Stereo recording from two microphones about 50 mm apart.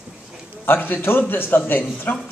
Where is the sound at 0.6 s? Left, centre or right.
Left.